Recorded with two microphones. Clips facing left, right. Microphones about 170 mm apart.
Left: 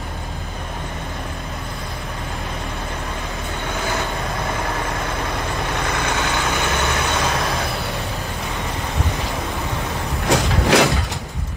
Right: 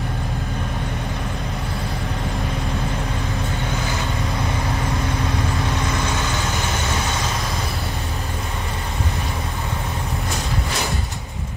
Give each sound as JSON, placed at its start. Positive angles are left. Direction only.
{"t": 10.2, "sound": "vehicle", "side_deg": 70}